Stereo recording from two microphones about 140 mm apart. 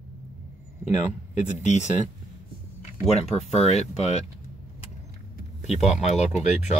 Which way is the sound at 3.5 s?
50° left (ahead or behind).